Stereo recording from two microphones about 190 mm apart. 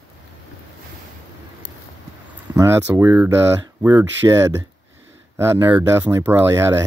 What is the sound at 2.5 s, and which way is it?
Speech, 15° right (ahead or behind).